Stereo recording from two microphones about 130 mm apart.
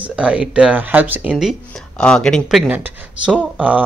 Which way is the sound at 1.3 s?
5° right (ahead or behind).